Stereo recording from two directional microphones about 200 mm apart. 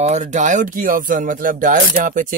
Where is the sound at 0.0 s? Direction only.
35° right (ahead or behind).